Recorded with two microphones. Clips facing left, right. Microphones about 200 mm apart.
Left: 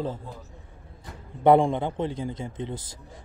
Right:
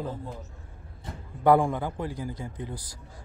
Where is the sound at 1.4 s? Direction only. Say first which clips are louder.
Left 3 dB; 25° left (ahead or behind).